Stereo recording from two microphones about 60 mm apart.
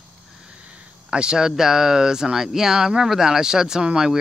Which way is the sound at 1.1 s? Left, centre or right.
Centre.